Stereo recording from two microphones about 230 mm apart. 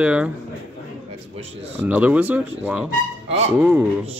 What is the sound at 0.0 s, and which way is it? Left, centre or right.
Speech, centre.